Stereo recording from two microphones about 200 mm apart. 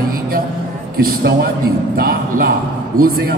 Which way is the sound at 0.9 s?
50° right (ahead or behind).